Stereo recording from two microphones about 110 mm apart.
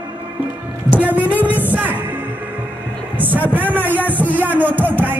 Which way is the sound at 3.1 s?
15° right (ahead or behind).